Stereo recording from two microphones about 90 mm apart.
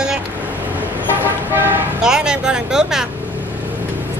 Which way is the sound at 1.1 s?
25° right (ahead or behind).